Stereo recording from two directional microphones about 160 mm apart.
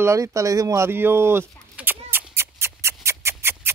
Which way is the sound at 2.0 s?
15° right (ahead or behind).